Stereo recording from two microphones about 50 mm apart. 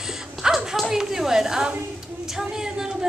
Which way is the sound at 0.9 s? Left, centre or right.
Centre.